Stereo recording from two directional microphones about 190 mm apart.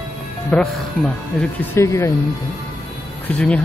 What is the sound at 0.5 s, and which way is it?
Speech, 5° left (ahead or behind).